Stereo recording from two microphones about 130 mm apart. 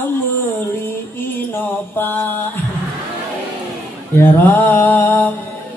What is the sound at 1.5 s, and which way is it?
Mantra, 15° left (ahead or behind).